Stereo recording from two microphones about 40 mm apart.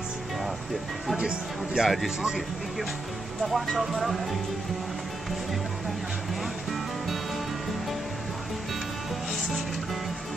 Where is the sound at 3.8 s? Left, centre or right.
Centre.